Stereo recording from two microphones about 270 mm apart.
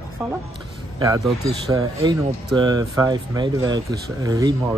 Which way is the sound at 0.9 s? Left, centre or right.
Centre.